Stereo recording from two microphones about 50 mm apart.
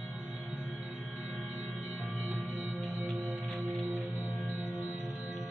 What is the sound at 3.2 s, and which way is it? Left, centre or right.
Music, right.